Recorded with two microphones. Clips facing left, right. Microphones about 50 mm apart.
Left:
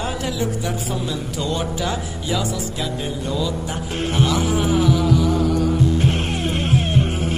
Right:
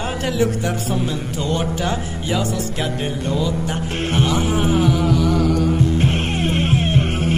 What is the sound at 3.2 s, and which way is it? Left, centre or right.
Music, right.